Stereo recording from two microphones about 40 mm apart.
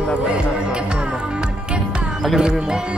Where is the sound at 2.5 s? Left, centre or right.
Centre.